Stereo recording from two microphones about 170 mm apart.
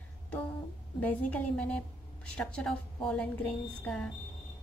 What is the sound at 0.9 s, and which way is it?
Speech, 10° left (ahead or behind).